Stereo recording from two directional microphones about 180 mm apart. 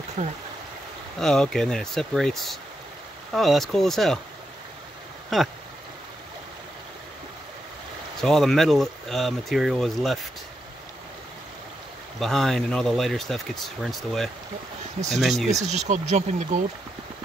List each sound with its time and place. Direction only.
0.2 s speech: 40° right (ahead or behind)
1.2 s speech: 5° left (ahead or behind)
8.2 s speech: centre (ahead or behind)
12.2 s speech: centre (ahead or behind)
15.6 s speech: 40° right (ahead or behind)